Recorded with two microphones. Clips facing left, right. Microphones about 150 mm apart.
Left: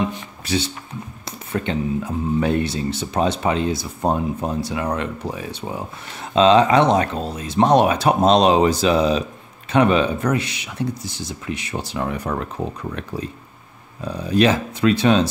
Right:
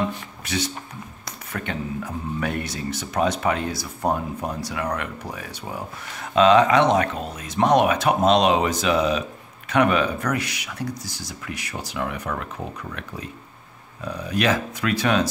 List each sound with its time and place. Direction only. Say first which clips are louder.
0.5 s speech: left 4 dB; 30° left (ahead or behind)